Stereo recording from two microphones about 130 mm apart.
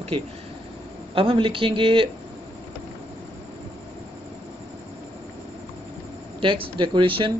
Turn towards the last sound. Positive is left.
turn(degrees=-40)  # may be behind; listen again after turning